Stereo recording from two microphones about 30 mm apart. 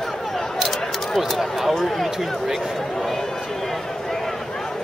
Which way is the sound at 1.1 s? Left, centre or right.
Centre.